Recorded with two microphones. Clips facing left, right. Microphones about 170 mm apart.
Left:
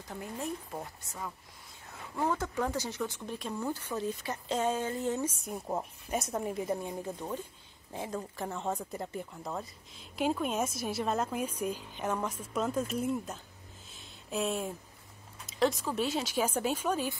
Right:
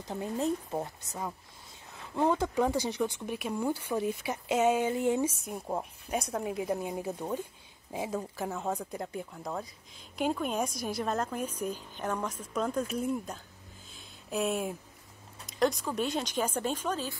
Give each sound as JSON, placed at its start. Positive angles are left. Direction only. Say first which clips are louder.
{"t": 0.1, "sound": "a woman's voice", "louder": "right 7 dB", "side_deg": -25}
{"t": 5.4, "sound": "speech", "louder": "even", "side_deg": 0}
{"t": 13.9, "sound": "a sound", "louder": "right 2 dB", "side_deg": 0}
{"t": 15.4, "sound": "speech", "louder": "right 1 dB", "side_deg": 0}